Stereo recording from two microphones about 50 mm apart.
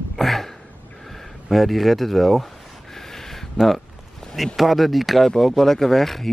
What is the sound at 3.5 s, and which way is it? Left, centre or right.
Speech, centre.